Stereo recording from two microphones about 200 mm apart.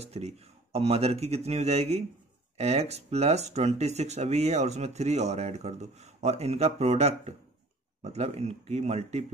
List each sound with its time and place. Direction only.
0.0 s speech: 30° right (ahead or behind)